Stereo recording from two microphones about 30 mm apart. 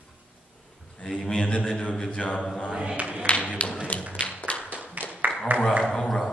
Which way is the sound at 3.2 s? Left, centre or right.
Left.